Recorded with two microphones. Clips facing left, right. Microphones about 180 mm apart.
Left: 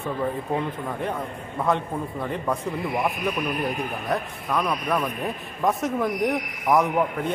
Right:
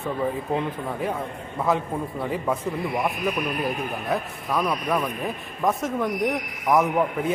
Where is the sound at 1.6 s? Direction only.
5° right (ahead or behind).